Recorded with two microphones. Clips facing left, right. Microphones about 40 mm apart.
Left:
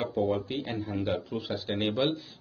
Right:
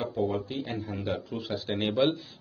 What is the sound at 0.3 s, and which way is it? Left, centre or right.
Speech, left.